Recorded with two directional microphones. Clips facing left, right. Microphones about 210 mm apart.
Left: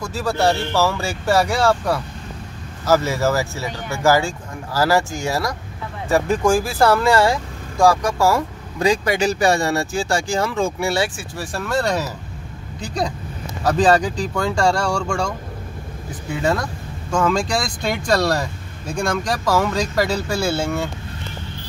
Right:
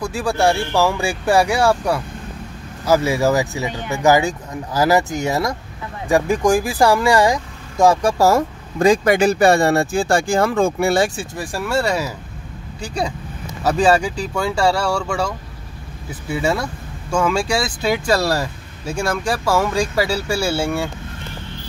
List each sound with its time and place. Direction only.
0.0 s speech: 15° right (ahead or behind); by 11.1 s 55° right (ahead or behind)
11.3 s speech: 10° right (ahead or behind)